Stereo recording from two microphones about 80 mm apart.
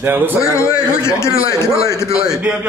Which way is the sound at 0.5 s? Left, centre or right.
Left.